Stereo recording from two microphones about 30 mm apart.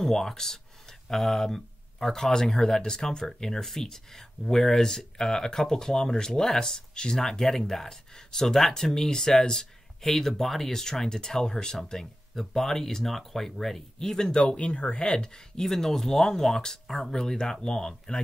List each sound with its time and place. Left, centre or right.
0.0 s speech: centre
2.3 s speech: left
13.9 s speech: left
14.4 s speech: left
15.2 s speech: left
15.7 s speech: centre